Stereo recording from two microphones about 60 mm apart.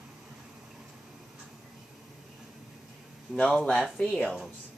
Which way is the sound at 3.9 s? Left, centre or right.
Centre.